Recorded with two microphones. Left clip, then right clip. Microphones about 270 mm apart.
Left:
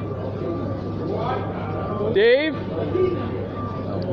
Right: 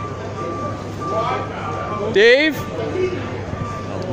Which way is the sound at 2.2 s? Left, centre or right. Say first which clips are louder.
Right 5 dB; right.